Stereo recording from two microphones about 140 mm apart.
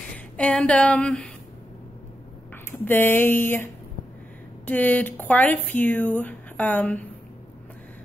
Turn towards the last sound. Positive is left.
turn(degrees=10)  # may be behind; listen again after turning